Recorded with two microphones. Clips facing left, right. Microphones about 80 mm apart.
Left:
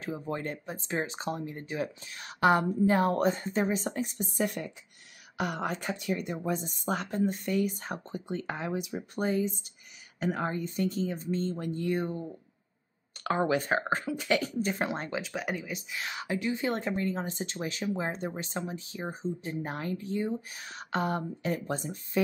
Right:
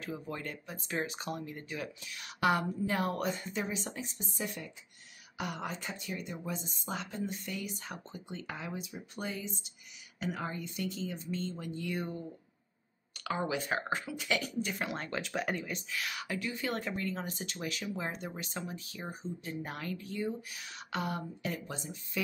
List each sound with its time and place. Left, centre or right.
0.0 s speech: left
8.7 s speech: left
9.1 s speech: left
13.2 s speech: left
13.7 s speech: left
15.2 s speech: centre
15.9 s speech: left